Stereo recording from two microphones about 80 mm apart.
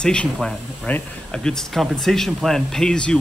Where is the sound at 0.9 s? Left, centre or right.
Left.